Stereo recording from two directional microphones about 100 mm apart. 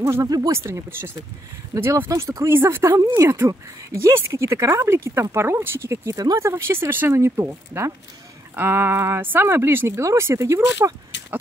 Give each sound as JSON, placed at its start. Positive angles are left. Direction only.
{"t": 0.0, "sound": "speech", "side_deg": -25}
{"t": 0.3, "sound": "speech", "side_deg": -35}
{"t": 0.6, "sound": "speech", "side_deg": -25}
{"t": 6.5, "sound": "speech", "side_deg": -25}